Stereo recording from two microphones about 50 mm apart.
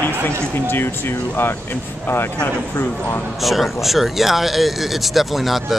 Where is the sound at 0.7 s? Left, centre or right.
Left.